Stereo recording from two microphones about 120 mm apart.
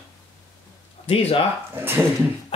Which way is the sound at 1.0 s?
55° left (ahead or behind).